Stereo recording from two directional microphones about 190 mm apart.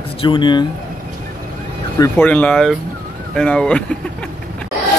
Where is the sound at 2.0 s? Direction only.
10° left (ahead or behind).